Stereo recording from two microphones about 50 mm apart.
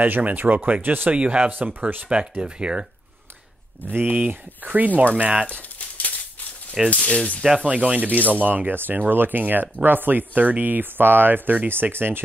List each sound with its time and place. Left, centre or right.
0.0 s speech: right
1.1 s speech: right
1.5 s speech: right
2.0 s speech: right
3.9 s speech: right
5.5 s a sound: left
7.0 s speech: centre
7.6 s speech: right